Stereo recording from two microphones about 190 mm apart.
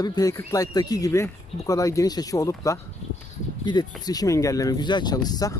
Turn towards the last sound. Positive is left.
turn(degrees=20)  # may be behind; listen again after turning